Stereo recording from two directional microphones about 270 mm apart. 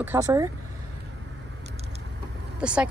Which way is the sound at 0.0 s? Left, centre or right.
Centre.